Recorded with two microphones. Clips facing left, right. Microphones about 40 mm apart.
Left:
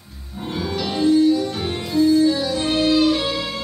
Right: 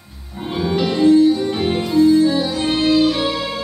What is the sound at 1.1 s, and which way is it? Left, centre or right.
Music, right.